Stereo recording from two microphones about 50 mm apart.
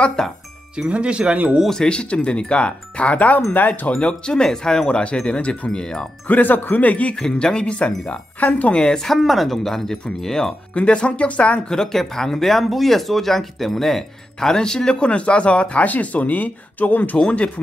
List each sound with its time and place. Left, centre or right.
0.2 s music: centre
0.8 s speech: right
1.7 s speech: centre
6.2 s speech: left
7.2 s speech: centre
8.9 s speech: centre
10.8 s speech: left
11.7 s speech: centre; by 17.5 s left